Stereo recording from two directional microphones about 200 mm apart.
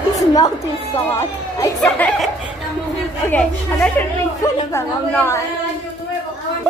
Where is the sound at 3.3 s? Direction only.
5° left (ahead or behind).